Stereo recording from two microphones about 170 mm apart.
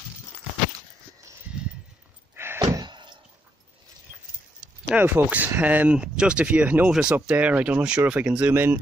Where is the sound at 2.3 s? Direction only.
15° right (ahead or behind).